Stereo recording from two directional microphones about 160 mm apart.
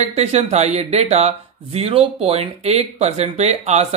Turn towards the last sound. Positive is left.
turn(degrees=-45)  # may be behind; listen again after turning